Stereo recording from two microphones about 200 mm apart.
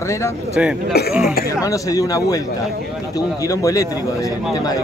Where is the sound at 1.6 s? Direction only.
15° left (ahead or behind).